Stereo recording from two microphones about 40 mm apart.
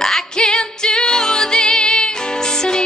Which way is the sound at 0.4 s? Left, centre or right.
Left.